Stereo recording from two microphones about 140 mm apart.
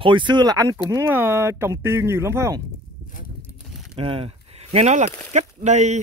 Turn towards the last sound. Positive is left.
turn(degrees=-55)  # may be behind; listen again after turning